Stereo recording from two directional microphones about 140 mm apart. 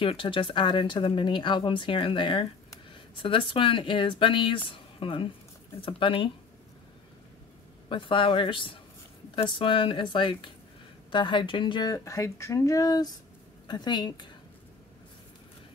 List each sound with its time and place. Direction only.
0.0 s speech: 40° left (ahead or behind)
7.9 s speech: 35° left (ahead or behind)